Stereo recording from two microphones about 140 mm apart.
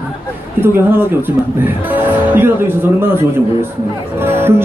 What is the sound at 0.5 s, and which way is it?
A man's voice, 15° right (ahead or behind).